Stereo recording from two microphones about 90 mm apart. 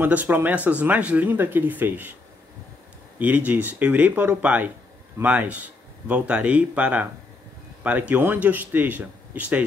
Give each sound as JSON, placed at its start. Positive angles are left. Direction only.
{"t": 0.0, "sound": "speech", "side_deg": -20}
{"t": 3.2, "sound": "speech", "side_deg": -15}